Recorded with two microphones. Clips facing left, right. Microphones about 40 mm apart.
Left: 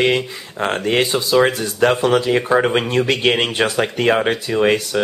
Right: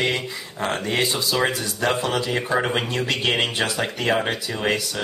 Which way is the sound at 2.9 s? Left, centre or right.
Left.